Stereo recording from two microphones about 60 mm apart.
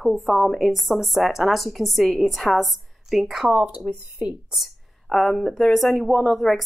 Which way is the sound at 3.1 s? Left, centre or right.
Centre.